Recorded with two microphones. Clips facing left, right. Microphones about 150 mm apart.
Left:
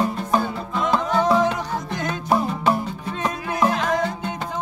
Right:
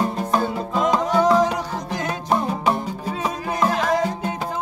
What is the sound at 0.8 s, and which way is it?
Music, 10° right (ahead or behind).